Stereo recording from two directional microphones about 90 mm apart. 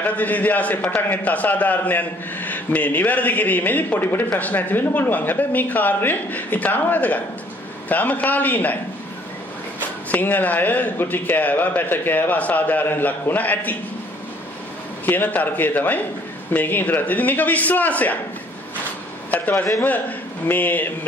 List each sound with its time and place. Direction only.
0.0 s a man's voice: 20° left (ahead or behind)
9.8 s a man's voice: 20° left (ahead or behind)
15.0 s a man's voice: 20° left (ahead or behind)
19.3 s a man's voice: 20° left (ahead or behind)